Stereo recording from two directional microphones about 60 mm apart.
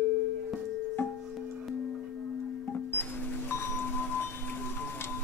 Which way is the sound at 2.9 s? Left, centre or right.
Left.